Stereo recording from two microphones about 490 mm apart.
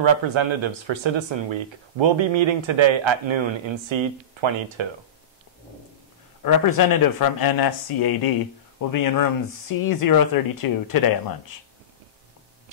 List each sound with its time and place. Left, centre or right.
0.0 s speech: right
6.4 s speech: left